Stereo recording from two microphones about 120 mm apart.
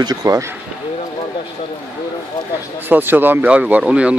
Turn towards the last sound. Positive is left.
turn(degrees=-10)  # may be behind; listen again after turning